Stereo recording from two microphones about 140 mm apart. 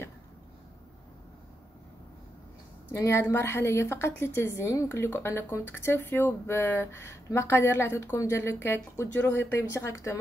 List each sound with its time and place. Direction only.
2.9 s a woman's voice: 20° left (ahead or behind)